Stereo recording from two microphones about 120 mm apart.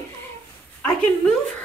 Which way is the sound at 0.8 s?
10° left (ahead or behind).